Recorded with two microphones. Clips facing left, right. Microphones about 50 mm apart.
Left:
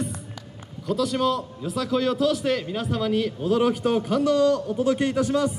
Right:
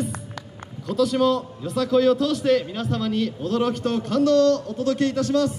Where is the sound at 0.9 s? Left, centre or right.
Centre.